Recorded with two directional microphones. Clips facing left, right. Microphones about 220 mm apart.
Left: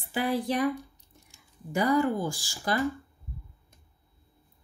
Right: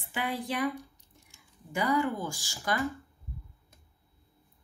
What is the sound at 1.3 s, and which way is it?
Speech, 40° left (ahead or behind).